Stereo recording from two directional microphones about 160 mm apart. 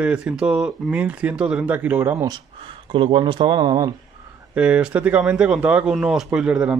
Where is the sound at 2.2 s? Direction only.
30° right (ahead or behind).